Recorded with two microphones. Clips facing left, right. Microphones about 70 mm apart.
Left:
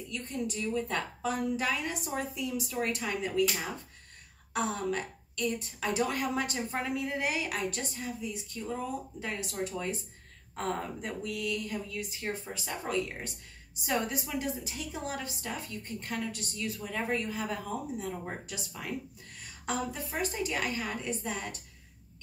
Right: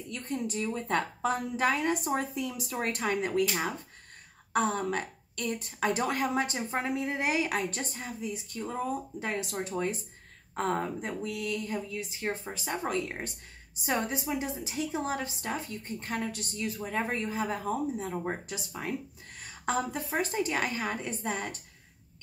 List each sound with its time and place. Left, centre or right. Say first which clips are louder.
0.1 s a woman's voice: right 2 dB; right